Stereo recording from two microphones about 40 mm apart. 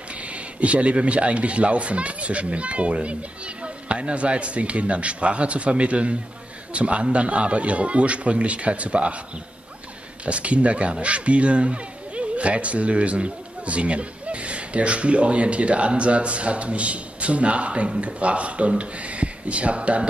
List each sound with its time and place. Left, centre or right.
0.1 s a man's voice: right
10.2 s a man's voice: right